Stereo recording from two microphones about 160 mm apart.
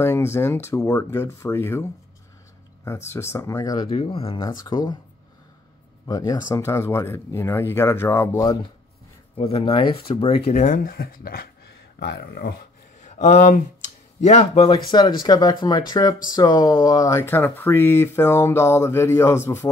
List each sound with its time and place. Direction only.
0.0 s speech: 15° left (ahead or behind)
3.9 s speech: 35° left (ahead or behind)
4.4 s speech: 25° left (ahead or behind)
6.0 s speech: 20° left (ahead or behind)
9.4 s speech: 35° left (ahead or behind); by 11.4 s 70° left (ahead or behind)
12.0 s speech: 90° left
13.1 s speech: 50° left (ahead or behind)
14.9 s speech: 30° left (ahead or behind)